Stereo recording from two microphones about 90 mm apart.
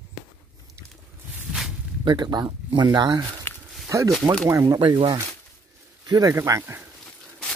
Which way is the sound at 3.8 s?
35° right (ahead or behind).